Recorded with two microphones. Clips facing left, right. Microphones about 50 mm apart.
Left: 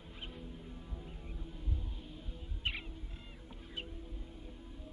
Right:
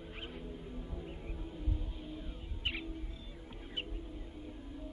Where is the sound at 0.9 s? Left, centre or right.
Right.